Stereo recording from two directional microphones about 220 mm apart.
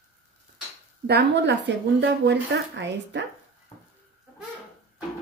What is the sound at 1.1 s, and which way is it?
Speech, 50° right (ahead or behind).